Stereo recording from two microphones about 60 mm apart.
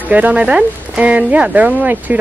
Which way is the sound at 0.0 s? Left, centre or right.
Right.